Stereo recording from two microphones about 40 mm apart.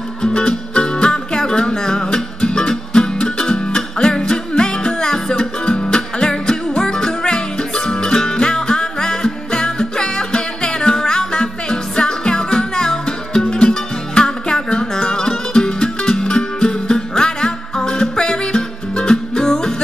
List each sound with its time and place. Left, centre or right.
0.2 s music: left